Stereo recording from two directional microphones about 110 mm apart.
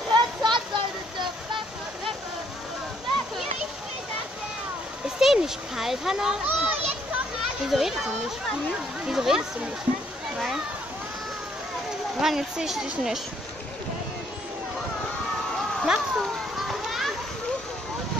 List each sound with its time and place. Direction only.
0.1 s a sound: 45° right (ahead or behind)
5.0 s a child's voice: 5° right (ahead or behind)
12.2 s a woman's voice: 5° right (ahead or behind)
15.5 s children playing: centre (ahead or behind)